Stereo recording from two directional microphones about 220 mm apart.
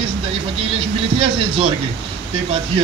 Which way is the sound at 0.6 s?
25° right (ahead or behind).